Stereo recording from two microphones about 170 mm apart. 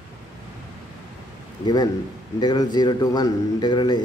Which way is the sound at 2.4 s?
25° left (ahead or behind).